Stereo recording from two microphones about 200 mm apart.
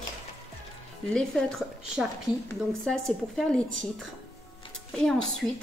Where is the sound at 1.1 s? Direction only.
5° left (ahead or behind).